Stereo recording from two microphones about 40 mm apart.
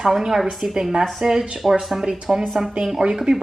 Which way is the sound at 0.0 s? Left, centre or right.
Centre.